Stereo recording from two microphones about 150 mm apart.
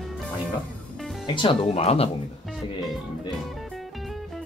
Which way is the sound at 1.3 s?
35° left (ahead or behind).